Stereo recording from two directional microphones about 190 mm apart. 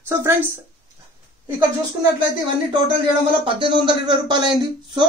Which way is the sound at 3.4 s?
25° right (ahead or behind).